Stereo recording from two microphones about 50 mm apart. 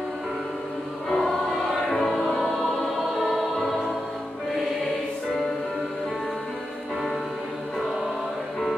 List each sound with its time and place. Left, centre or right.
1.0 s choir: centre
1.9 s music: centre
3.0 s choir: centre